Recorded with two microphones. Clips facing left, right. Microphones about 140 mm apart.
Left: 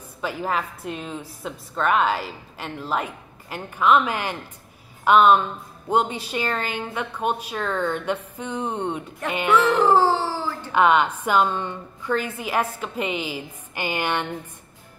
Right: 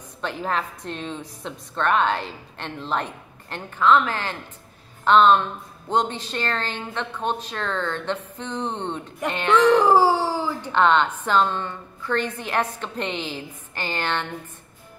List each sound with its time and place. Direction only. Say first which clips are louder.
0.2 s a woman's voice: left 1 dB; 5° left (ahead or behind)
9.8 s a sound: right 1 dB; 10° right (ahead or behind)
10.7 s a woman's voice: left 1 dB; 10° left (ahead or behind)